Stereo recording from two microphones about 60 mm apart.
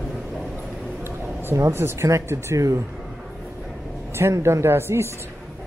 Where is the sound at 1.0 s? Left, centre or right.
Right.